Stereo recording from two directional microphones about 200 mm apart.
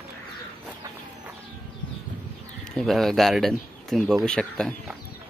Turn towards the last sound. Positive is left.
turn(degrees=5)  # may be behind; listen again after turning